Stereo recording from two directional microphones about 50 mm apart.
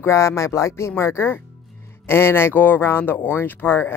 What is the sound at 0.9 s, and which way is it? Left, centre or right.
Speech, left.